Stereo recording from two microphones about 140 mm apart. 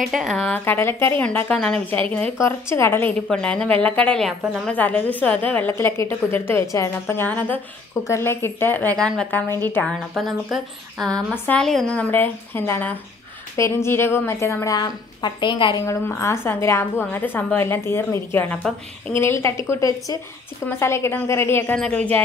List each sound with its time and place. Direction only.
0.0 s speech: centre (ahead or behind)
0.7 s a woman's voice: 15° left (ahead or behind)
10.1 s a woman's voice: centre (ahead or behind); by 15.8 s 35° left (ahead or behind)
15.8 s a woman's voice: 20° left (ahead or behind)